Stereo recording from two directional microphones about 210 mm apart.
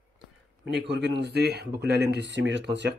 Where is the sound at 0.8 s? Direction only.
55° right (ahead or behind).